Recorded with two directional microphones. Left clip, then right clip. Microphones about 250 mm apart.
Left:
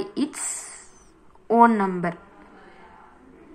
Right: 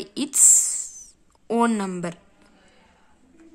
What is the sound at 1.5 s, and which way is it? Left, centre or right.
Speech, right.